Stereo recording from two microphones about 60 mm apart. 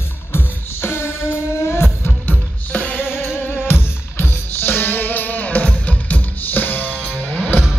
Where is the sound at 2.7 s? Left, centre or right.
Left.